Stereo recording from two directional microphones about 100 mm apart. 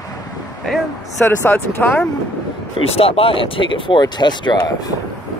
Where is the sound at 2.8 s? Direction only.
75° left (ahead or behind); by 4.9 s 45° left (ahead or behind).